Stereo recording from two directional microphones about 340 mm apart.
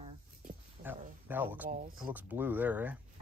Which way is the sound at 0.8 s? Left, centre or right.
Centre.